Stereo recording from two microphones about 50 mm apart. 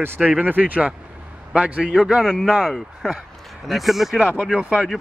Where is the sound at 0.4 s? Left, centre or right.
Right; by 2.2 s centre.